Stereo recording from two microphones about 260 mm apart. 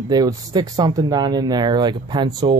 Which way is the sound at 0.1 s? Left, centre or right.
Centre.